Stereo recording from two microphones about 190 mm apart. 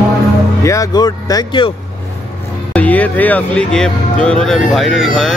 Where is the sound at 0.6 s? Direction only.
20° left (ahead or behind).